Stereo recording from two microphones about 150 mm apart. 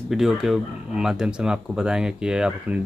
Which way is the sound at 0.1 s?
5° right (ahead or behind).